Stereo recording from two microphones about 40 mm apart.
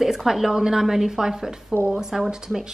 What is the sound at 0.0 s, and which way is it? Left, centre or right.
A woman's voice, centre.